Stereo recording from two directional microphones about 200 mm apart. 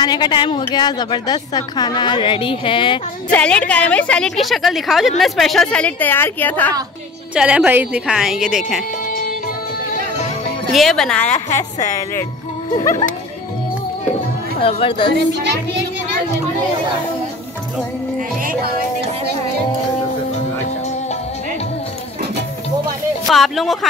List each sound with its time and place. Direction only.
0.0 s a woman's voice: 20° left (ahead or behind)
3.3 s a woman's voice: 5° left (ahead or behind)
7.3 s a woman's voice: 5° right (ahead or behind)
10.7 s a woman's voice: centre (ahead or behind)
14.6 s a woman's voice: 25° left (ahead or behind)
18.4 s speech: 45° right (ahead or behind)
23.2 s speech: centre (ahead or behind)